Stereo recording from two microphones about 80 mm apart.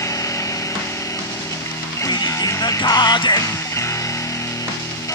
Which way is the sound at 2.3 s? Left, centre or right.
Left.